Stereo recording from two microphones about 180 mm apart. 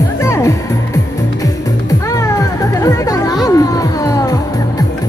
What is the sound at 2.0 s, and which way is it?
Music, 15° left (ahead or behind).